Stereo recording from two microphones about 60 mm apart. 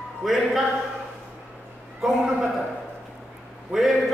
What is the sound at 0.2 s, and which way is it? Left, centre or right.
Speech, centre.